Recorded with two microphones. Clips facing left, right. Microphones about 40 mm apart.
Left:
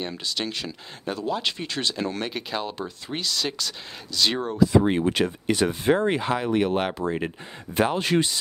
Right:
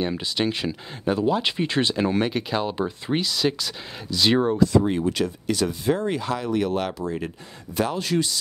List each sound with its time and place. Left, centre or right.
0.0 s speech: centre
2.3 s speech: centre
2.7 s speech: centre
4.7 s speech: left